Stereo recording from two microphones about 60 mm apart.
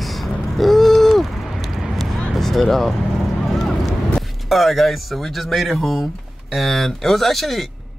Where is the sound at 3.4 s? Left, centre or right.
Centre.